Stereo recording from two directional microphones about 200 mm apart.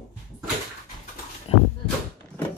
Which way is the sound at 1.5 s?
30° left (ahead or behind).